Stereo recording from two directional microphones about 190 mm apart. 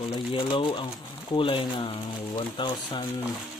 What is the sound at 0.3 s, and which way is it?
Speech, 25° left (ahead or behind).